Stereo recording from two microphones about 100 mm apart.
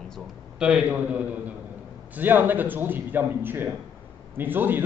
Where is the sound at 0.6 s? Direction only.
10° right (ahead or behind).